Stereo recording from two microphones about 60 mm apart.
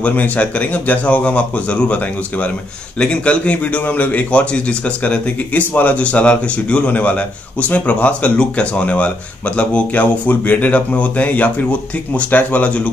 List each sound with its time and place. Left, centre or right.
0.0 s speech: left
3.0 s speech: centre